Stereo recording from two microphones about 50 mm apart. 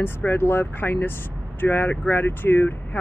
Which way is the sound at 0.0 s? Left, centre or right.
Left.